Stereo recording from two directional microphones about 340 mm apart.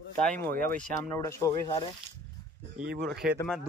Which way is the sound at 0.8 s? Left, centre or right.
Centre.